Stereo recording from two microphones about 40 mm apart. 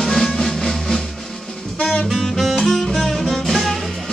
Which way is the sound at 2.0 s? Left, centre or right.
Centre.